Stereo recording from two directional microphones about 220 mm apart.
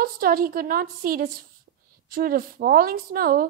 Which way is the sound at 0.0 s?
40° right (ahead or behind).